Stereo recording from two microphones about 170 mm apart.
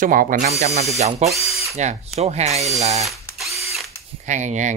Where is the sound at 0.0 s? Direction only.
55° right (ahead or behind).